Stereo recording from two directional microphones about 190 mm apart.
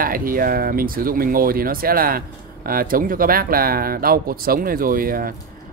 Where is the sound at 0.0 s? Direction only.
50° right (ahead or behind).